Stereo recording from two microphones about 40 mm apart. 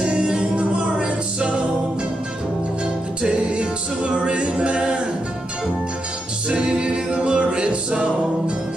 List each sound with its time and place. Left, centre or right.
0.0 s music: right
3.2 s a capella: right
6.5 s a capella: right